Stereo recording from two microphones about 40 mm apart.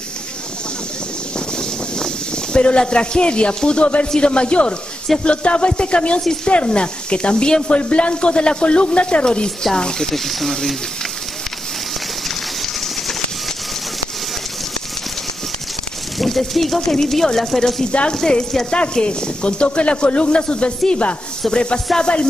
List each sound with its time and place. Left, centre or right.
1.6 s a sound: centre
4.2 s speech: left
10.1 s speech: centre
16.2 s speech: centre
18.7 s speech: left
21.5 s speech: left